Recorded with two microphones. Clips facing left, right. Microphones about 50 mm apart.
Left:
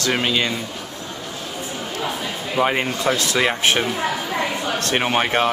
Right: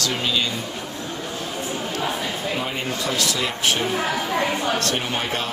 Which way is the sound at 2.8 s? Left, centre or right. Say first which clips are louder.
Left 4 dB; left.